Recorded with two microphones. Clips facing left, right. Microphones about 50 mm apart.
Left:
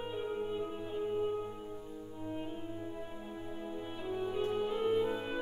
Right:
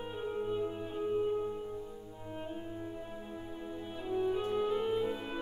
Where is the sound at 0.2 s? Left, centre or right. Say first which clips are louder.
Right 4 dB; centre.